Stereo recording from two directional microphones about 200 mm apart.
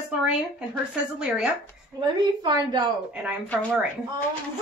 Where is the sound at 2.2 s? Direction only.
20° right (ahead or behind).